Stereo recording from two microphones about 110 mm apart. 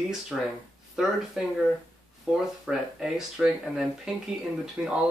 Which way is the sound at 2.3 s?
5° right (ahead or behind).